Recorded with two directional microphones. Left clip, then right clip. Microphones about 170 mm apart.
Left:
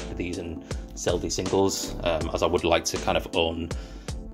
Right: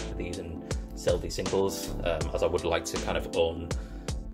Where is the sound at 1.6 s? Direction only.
45° left (ahead or behind).